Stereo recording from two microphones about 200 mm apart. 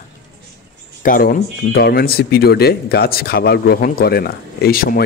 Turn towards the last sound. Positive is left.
turn(degrees=50)  # may be behind; listen again after turning